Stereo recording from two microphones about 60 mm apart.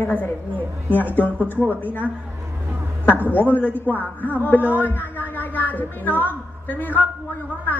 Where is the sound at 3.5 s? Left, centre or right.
Left.